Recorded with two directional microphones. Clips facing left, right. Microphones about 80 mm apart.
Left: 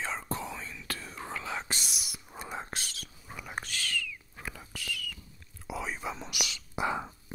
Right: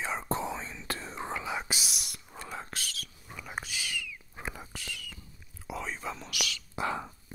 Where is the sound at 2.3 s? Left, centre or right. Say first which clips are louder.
Left 1 dB; left.